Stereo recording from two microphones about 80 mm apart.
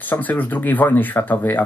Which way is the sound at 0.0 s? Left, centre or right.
Left.